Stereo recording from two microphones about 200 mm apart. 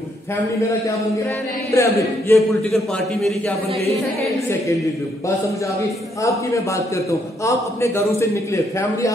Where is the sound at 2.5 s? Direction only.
Centre (ahead or behind).